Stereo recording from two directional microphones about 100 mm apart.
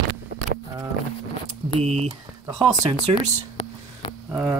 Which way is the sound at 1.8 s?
90° right.